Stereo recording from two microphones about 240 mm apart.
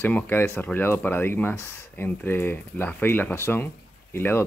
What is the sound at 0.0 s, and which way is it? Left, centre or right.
Speech, centre.